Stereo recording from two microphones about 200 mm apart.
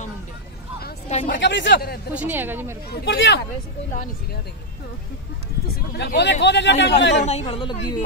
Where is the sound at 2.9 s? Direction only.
60° left (ahead or behind).